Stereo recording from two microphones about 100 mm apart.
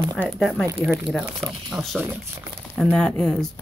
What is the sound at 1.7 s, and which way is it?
Speech, 10° right (ahead or behind).